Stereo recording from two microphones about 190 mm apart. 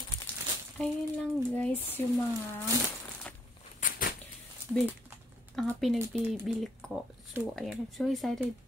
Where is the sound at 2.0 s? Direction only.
10° left (ahead or behind).